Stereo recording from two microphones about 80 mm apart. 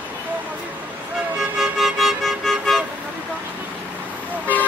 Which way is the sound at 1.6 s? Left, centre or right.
Centre.